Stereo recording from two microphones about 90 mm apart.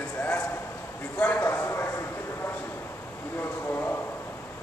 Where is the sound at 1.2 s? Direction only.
20° left (ahead or behind).